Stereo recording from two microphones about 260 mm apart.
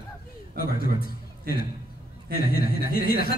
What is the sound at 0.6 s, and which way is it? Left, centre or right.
A man's voice, left.